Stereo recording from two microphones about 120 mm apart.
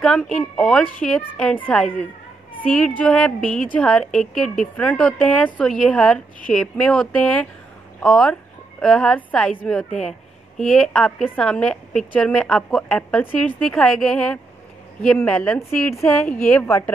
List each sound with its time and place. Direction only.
0.0 s a woman's voice: 5° left (ahead or behind)
16.6 s speech: 25° left (ahead or behind)